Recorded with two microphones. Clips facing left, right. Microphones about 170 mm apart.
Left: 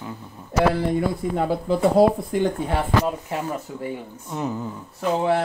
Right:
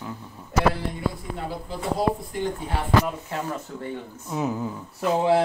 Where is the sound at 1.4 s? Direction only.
65° left (ahead or behind).